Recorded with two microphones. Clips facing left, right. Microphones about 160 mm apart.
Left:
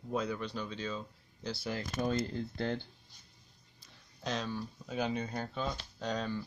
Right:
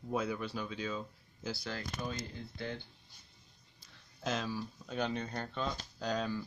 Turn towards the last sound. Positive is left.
turn(degrees=0)  # may be behind; listen again after turning